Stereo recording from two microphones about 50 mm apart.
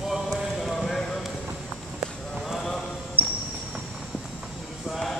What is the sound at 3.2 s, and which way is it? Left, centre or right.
Basketball bounce, right.